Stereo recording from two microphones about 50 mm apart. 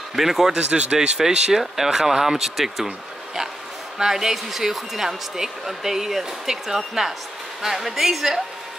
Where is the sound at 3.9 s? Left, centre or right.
Centre.